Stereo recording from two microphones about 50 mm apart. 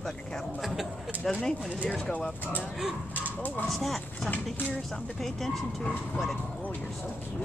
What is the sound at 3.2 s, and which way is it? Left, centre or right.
Speech, left.